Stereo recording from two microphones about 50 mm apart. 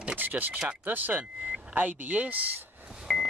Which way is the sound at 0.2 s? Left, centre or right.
Right.